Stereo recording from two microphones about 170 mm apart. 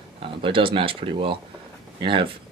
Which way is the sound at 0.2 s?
30° right (ahead or behind).